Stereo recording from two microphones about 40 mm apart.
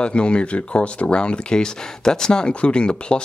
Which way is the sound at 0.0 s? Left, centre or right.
Left.